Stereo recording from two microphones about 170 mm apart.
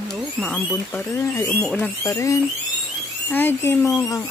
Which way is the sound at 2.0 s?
20° left (ahead or behind).